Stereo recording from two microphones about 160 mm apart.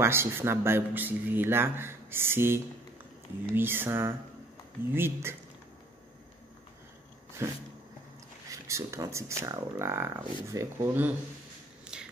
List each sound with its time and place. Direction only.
0.0 s speech: 15° right (ahead or behind)
7.4 s speech: 15° right (ahead or behind)
11.9 s a sound: 5° right (ahead or behind)